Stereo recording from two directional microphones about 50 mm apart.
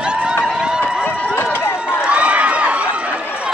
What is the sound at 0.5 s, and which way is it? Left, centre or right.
Run, centre.